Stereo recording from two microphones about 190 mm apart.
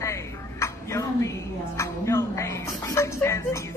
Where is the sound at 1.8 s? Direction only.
15° left (ahead or behind).